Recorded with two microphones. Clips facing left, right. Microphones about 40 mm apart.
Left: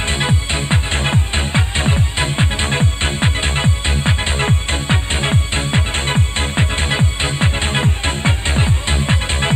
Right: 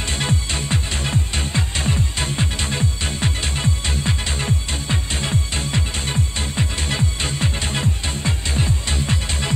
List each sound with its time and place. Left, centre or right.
0.0 s music: left